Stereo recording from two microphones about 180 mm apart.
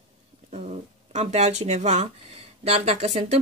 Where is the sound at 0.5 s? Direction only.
40° right (ahead or behind).